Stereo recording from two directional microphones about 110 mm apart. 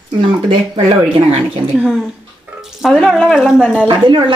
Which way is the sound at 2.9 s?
5° left (ahead or behind).